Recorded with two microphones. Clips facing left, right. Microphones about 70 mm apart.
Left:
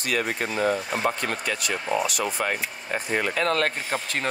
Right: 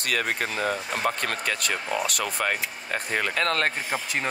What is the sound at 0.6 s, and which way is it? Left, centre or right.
Speech, left.